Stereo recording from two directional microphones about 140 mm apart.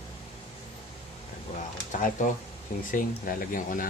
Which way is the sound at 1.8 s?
70° left (ahead or behind).